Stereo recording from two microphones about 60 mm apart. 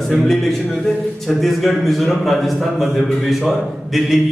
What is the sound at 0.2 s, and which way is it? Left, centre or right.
A man's voice, centre.